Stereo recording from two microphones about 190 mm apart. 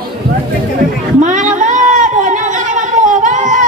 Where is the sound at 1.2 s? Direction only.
40° right (ahead or behind).